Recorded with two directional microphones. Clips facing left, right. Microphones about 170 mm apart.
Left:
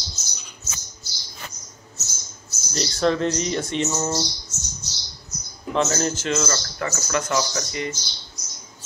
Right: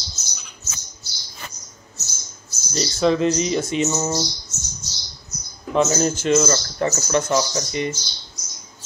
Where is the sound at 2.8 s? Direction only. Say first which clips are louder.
Right 3 dB; 5° right (ahead or behind).